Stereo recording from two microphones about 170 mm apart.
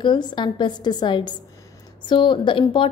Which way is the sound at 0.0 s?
25° left (ahead or behind).